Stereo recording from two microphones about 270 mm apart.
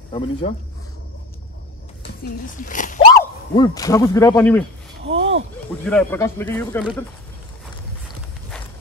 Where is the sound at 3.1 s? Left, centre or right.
Centre.